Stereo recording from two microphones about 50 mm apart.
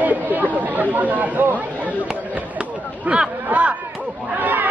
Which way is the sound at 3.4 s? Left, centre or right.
Right.